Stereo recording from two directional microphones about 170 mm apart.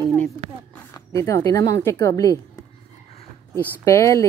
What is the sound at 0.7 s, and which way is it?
Speech, 15° left (ahead or behind).